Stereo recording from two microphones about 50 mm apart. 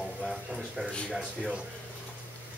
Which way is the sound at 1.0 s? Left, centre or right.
Centre.